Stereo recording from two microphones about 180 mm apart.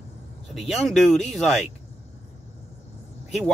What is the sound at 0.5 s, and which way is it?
Speech, centre (ahead or behind).